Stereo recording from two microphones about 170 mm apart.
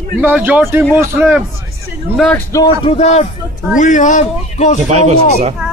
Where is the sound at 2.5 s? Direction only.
20° left (ahead or behind).